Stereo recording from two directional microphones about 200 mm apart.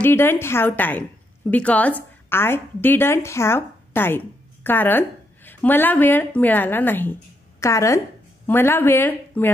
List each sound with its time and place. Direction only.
0.0 s a woman's voice: 10° left (ahead or behind)